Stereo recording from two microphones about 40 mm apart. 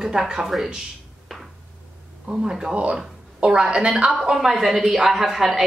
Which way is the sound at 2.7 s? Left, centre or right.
Right.